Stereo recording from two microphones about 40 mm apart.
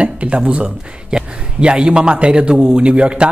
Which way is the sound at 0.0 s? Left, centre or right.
Right.